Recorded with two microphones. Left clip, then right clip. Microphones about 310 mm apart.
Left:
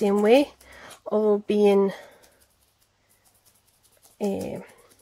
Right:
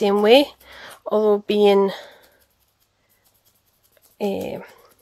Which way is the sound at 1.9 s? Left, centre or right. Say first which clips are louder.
Right 6 dB; right.